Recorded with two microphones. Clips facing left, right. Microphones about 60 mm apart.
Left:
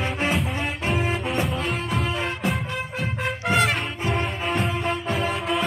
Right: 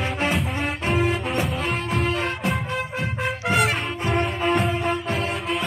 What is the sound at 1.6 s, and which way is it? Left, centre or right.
Music, right.